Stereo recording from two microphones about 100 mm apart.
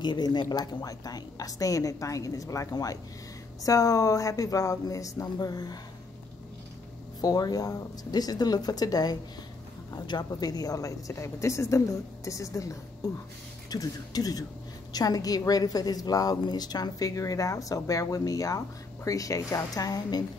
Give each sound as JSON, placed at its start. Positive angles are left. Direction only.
{"t": 0.0, "sound": "a woman's voice", "side_deg": 45}
{"t": 7.2, "sound": "a woman's voice", "side_deg": 40}